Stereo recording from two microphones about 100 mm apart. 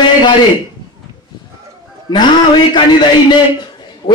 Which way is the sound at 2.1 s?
50° left (ahead or behind).